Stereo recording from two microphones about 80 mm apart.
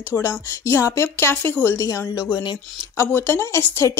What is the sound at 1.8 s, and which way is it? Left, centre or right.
Speech, left.